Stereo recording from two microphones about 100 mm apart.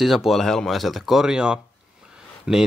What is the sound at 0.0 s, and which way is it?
Speech, centre (ahead or behind).